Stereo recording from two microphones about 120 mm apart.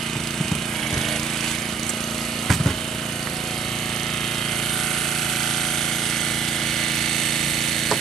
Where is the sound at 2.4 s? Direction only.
Centre (ahead or behind).